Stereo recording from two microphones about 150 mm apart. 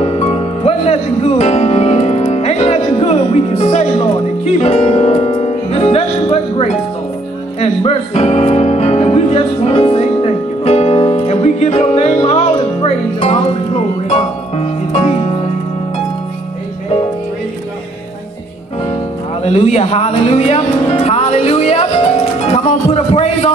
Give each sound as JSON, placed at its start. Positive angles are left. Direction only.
{"t": 0.0, "sound": "music", "side_deg": 40}
{"t": 19.4, "sound": "music", "side_deg": 45}